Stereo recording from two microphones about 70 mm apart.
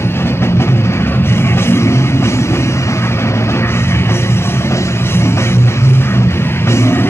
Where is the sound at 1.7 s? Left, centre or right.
Left.